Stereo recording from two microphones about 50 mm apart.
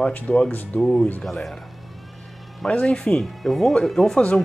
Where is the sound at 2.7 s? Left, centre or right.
Left.